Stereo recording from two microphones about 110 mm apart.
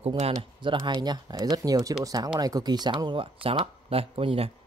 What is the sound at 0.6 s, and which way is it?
Speech, 45° right (ahead or behind).